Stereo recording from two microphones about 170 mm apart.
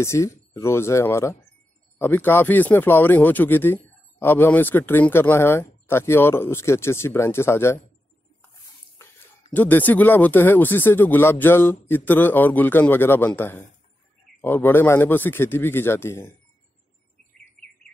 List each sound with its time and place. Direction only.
0.0 s speech: 15° left (ahead or behind)
9.0 s a sound: 15° left (ahead or behind)
9.5 s speech: 10° left (ahead or behind)